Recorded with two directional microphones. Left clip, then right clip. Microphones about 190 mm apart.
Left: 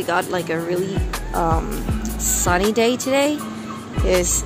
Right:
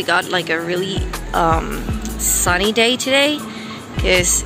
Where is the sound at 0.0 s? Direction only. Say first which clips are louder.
Right 4 dB; centre (ahead or behind).